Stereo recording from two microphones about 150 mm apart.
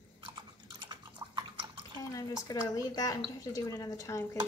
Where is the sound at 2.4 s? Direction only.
25° left (ahead or behind).